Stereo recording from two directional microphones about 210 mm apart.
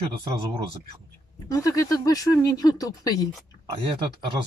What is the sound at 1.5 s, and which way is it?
Speech, 15° left (ahead or behind).